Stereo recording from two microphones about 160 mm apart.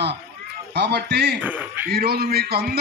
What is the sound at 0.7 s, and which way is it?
Speech, 90° right.